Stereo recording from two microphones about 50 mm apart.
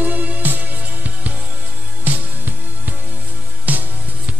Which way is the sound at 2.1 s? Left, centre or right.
Right.